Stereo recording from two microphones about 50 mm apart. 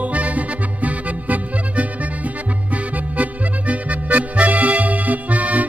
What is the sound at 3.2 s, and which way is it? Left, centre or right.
Music, right.